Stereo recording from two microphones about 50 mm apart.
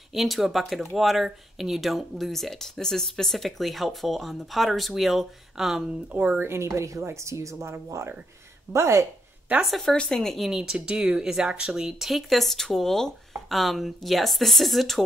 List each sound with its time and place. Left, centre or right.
0.1 s speech: centre
6.1 s speech: right
6.4 s speech: right
9.7 s speech: centre
10.5 s speech: centre
12.0 s speech: centre